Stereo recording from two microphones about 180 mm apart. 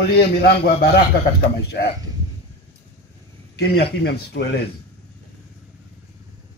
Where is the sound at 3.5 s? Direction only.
65° left (ahead or behind).